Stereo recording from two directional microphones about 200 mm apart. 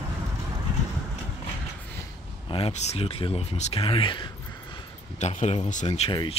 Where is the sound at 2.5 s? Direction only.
30° left (ahead or behind).